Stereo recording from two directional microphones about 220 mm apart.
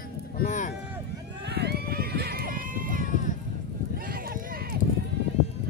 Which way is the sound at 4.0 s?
40° right (ahead or behind).